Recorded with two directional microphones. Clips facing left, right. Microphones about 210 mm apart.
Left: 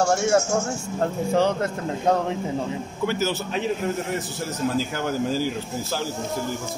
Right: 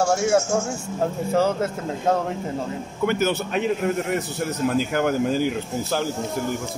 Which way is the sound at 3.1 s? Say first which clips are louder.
Right 4 dB; 55° right (ahead or behind).